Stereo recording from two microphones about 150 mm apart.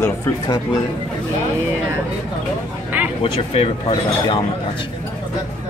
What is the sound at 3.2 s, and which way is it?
Speech, 35° left (ahead or behind).